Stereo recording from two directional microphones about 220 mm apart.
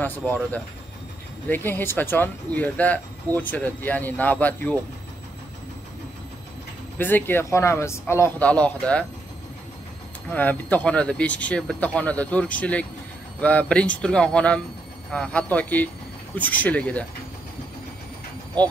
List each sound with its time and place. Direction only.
0.0 s speech: 5° left (ahead or behind)
7.0 s speech: 10° left (ahead or behind)
10.3 s speech: 10° left (ahead or behind)